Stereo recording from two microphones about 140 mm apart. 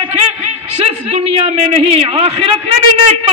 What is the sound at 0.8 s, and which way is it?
A man's voice, 50° right (ahead or behind).